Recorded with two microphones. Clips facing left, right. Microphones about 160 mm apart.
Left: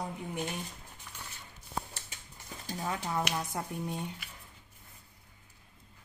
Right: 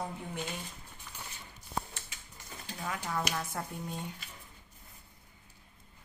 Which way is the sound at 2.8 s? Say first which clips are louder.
Left 2 dB; 20° left (ahead or behind).